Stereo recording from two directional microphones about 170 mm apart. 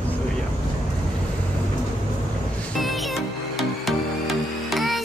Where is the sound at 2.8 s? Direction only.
Centre (ahead or behind).